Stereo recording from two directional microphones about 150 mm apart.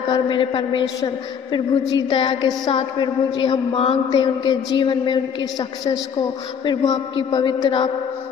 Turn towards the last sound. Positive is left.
turn(degrees=30)  # may be behind; listen again after turning